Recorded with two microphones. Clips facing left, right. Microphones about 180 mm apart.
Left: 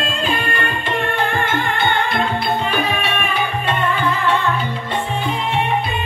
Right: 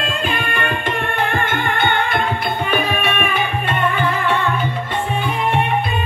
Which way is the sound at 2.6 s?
55° right (ahead or behind).